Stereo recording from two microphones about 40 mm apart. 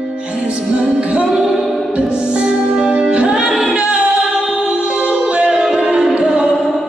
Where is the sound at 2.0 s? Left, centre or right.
Right.